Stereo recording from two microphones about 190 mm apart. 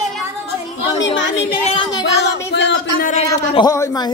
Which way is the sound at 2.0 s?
70° left (ahead or behind).